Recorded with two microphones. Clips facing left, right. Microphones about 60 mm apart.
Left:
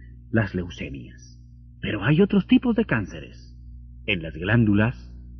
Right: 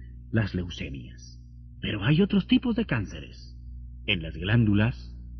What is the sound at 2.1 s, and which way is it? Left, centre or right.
Speech, left.